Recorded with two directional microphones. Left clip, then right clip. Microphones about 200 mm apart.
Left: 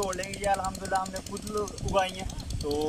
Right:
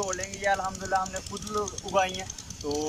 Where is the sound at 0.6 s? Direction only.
15° left (ahead or behind).